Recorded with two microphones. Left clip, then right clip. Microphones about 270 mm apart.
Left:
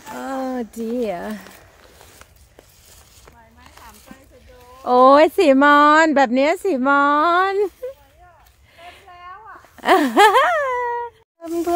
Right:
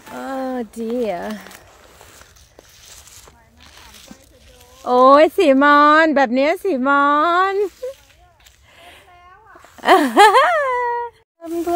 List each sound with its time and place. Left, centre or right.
0.1 s speech: centre
4.8 s speech: centre
9.8 s a sound: centre
11.4 s music: centre